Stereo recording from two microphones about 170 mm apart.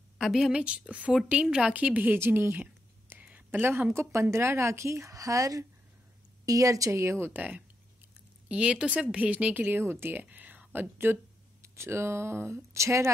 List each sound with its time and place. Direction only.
0.2 s a woman's voice: centre (ahead or behind); by 13.1 s 15° right (ahead or behind)